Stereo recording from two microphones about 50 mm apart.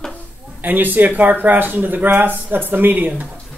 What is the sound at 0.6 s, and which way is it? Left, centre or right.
Speech, right.